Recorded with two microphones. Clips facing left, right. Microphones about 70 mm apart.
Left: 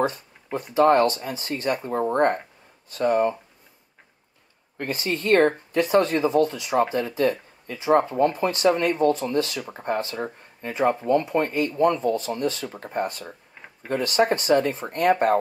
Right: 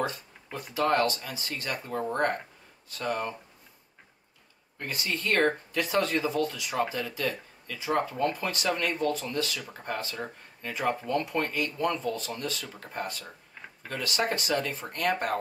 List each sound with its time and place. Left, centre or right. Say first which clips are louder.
0.0 s speech: left 7 dB; left
5.0 s speech: left 7 dB; left